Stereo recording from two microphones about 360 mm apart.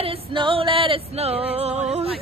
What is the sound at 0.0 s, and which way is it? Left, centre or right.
Female singing, centre.